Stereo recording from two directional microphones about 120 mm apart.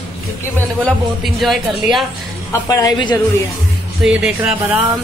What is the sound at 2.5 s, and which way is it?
Speech, 30° left (ahead or behind).